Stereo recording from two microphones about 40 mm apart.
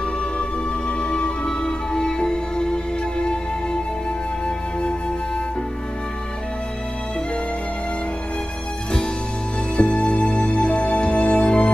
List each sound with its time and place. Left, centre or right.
0.4 s music: left
9.8 s music: left